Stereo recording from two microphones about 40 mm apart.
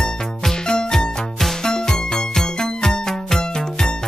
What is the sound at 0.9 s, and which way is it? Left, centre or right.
Music, centre.